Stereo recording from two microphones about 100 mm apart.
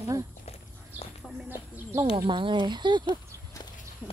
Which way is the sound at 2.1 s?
55° right (ahead or behind).